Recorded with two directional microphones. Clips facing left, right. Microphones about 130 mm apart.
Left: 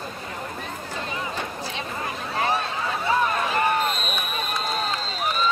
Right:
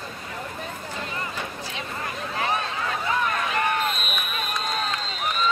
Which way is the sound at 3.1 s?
30° left (ahead or behind).